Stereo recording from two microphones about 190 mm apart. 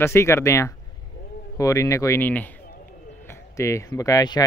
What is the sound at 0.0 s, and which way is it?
Speech, 15° left (ahead or behind).